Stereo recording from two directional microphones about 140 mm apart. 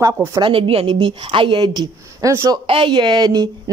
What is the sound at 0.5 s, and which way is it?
Speech, 40° right (ahead or behind).